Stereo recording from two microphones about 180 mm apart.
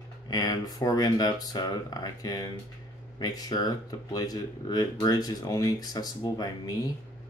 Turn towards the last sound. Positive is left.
turn(degrees=20)  # may be behind; listen again after turning